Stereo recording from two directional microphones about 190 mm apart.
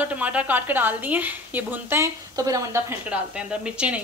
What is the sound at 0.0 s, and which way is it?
A woman's voice, 10° right (ahead or behind).